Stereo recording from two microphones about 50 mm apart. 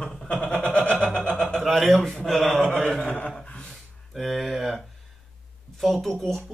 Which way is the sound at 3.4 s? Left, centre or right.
Left.